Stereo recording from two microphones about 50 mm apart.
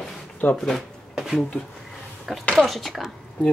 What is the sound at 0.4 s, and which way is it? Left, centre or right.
Speech, left.